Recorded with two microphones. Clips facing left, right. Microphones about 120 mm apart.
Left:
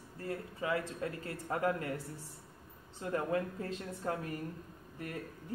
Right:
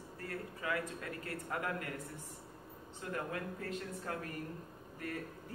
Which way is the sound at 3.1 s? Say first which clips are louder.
Left 7 dB; 30° left (ahead or behind).